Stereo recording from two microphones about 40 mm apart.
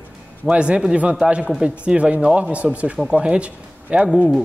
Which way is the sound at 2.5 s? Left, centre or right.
Right.